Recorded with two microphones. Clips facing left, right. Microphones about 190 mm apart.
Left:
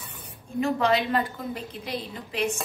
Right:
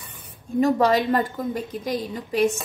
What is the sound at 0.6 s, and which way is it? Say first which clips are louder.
A woman's voice: right 5 dB; 40° right (ahead or behind).